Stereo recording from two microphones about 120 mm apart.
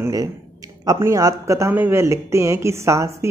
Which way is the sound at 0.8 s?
25° right (ahead or behind).